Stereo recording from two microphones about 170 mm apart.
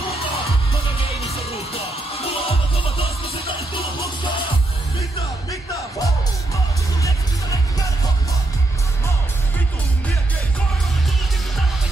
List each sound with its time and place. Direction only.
1.3 s music: 35° left (ahead or behind)
5.5 s music: 20° left (ahead or behind)